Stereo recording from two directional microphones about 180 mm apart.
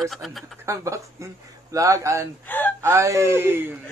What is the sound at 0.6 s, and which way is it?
Speech, 15° right (ahead or behind).